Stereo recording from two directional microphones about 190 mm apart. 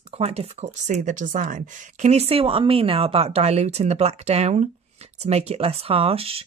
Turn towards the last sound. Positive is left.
turn(degrees=-30)  # may be behind; listen again after turning